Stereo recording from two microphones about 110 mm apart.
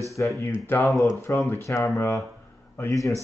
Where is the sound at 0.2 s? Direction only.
25° left (ahead or behind).